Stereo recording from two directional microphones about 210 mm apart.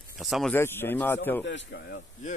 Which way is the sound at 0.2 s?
Centre (ahead or behind).